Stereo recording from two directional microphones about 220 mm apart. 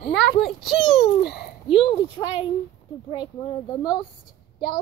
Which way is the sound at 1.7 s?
25° left (ahead or behind).